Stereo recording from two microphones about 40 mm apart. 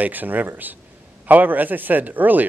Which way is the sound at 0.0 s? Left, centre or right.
Right.